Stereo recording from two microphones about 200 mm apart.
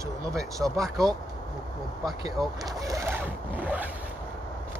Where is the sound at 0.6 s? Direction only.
5° right (ahead or behind).